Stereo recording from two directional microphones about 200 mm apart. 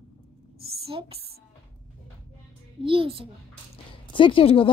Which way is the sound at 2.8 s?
25° right (ahead or behind).